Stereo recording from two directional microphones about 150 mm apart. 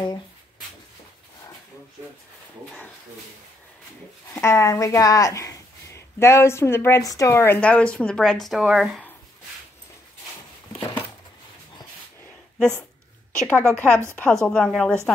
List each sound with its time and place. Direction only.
4.3 s speech: 20° left (ahead or behind); by 9.0 s 5° right (ahead or behind)
12.5 s a woman's voice: 5° left (ahead or behind)